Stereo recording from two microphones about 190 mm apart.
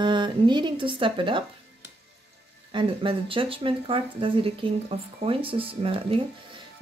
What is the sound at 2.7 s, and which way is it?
Speech, 25° right (ahead or behind).